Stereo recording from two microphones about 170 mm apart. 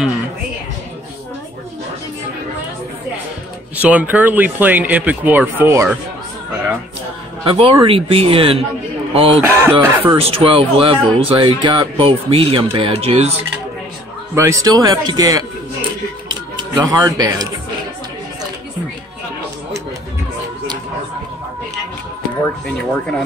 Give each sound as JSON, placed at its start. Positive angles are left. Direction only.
{"t": 3.7, "sound": "speech", "side_deg": -10}
{"t": 7.4, "sound": "speech", "side_deg": -35}
{"t": 9.4, "sound": "speech", "side_deg": -15}
{"t": 10.1, "sound": "speech", "side_deg": -35}
{"t": 14.3, "sound": "speech", "side_deg": -15}
{"t": 16.7, "sound": "speech", "side_deg": -20}
{"t": 22.4, "sound": "music", "side_deg": 5}